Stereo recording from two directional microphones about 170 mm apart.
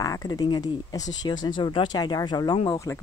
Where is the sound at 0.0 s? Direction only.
20° left (ahead or behind).